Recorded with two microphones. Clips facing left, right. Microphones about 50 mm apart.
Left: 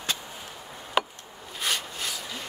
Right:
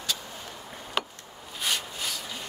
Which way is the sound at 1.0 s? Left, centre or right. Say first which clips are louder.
Left 5 dB; centre.